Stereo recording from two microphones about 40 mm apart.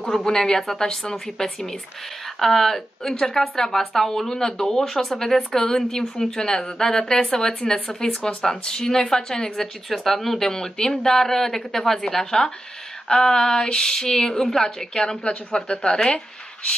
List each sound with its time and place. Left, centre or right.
0.0 s speech: centre
9.8 s speech: centre
10.5 s speech: centre